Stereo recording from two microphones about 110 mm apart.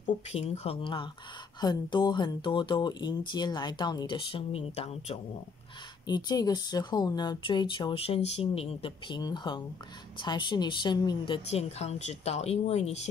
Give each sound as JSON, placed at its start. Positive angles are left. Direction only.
{"t": 0.3, "sound": "speech", "side_deg": 65}
{"t": 1.6, "sound": "speech", "side_deg": 40}
{"t": 6.0, "sound": "speech", "side_deg": 40}
{"t": 9.1, "sound": "speech", "side_deg": 40}
{"t": 11.4, "sound": "speech", "side_deg": 70}